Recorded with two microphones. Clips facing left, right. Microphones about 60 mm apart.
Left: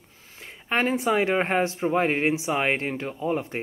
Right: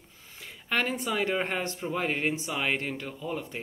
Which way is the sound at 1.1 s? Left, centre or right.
Left.